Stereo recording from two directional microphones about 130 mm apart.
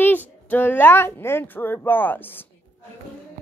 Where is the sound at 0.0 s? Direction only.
15° left (ahead or behind).